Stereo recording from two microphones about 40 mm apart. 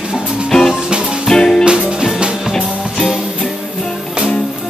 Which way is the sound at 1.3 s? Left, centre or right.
Centre.